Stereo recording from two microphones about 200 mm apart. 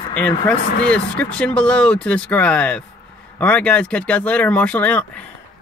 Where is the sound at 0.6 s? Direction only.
55° left (ahead or behind).